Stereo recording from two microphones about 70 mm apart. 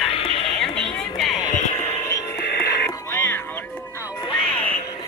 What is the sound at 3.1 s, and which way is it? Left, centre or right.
Music, left.